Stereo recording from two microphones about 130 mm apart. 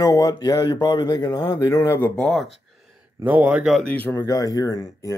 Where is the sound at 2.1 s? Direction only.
5° left (ahead or behind).